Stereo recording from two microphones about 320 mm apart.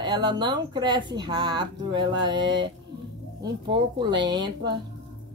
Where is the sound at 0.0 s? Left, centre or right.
Centre.